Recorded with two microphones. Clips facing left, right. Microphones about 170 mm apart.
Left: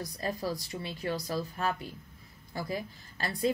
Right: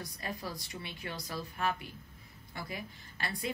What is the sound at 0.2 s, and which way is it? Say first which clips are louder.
A woman's voice: left 8 dB; 35° left (ahead or behind).